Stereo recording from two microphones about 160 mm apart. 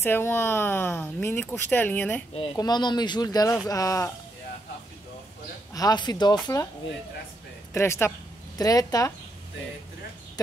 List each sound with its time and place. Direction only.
0.0 s speech: 15° left (ahead or behind)
2.5 s speech: 25° left (ahead or behind)
5.7 s speech: 25° left (ahead or behind)
7.7 s speech: 15° left (ahead or behind)